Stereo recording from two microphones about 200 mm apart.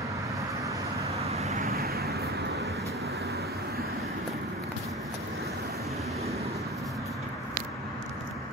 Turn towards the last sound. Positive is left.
turn(degrees=0)  # may be behind; listen again after turning